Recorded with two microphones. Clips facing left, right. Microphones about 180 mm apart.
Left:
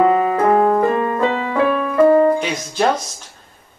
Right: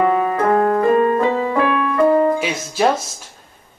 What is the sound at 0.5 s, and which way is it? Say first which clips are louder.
Music: left 1 dB; 25° left (ahead or behind).